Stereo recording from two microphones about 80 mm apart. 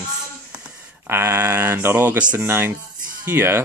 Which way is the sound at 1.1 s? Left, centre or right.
Right.